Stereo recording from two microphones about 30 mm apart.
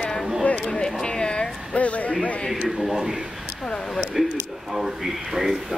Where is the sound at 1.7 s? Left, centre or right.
Left.